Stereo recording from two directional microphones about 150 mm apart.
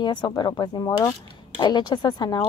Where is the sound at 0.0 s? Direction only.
30° left (ahead or behind).